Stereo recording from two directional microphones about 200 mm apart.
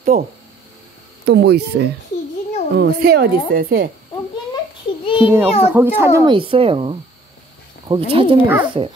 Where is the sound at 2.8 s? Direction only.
50° right (ahead or behind).